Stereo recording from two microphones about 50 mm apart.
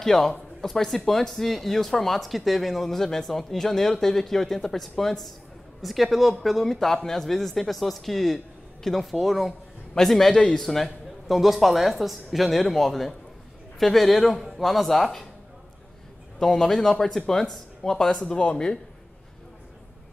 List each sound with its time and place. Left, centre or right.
0.0 s a man's voice: centre
16.3 s speech: centre
18.1 s speech: left